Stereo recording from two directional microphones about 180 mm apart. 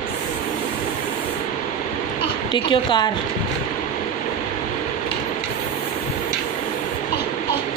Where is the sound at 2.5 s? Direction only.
25° left (ahead or behind).